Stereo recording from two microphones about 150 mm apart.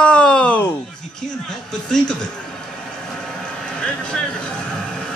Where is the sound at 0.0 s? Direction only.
5° left (ahead or behind).